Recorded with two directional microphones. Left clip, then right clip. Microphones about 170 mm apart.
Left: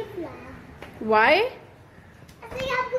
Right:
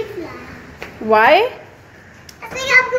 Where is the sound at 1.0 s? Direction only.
5° left (ahead or behind).